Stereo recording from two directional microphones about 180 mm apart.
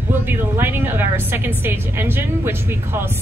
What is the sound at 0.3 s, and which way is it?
Speech, 10° right (ahead or behind).